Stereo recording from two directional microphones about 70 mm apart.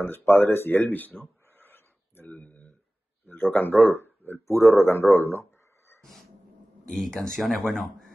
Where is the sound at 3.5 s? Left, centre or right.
Left.